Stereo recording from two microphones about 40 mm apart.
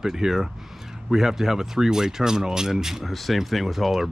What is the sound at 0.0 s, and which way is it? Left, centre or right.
Speech, centre.